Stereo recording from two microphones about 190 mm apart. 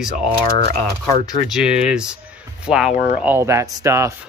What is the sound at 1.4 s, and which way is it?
Speech, 5° right (ahead or behind).